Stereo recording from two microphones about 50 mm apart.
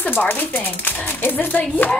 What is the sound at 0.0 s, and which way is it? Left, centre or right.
Speech, left.